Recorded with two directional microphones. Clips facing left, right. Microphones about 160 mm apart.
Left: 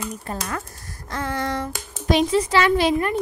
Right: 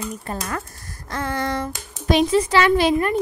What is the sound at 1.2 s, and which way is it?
A child's voice, 55° right (ahead or behind).